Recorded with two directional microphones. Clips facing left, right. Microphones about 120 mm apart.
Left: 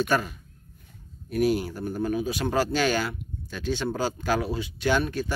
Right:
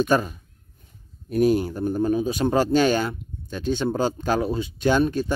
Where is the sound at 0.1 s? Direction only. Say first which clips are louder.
Right 4 dB; 25° right (ahead or behind).